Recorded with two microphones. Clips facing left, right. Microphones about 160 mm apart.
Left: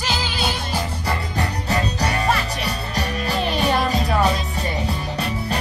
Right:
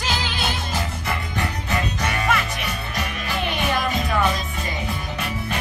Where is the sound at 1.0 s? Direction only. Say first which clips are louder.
Left 2 dB; 35° left (ahead or behind).